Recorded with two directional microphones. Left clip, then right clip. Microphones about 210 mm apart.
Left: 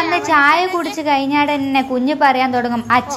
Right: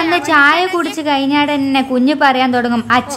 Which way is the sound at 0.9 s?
30° right (ahead or behind).